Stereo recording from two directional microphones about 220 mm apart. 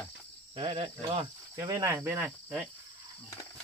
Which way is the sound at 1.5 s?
15° right (ahead or behind).